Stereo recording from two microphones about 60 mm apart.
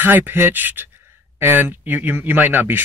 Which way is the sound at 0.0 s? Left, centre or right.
Right.